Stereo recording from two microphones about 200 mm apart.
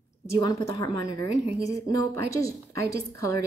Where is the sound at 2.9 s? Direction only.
15° left (ahead or behind).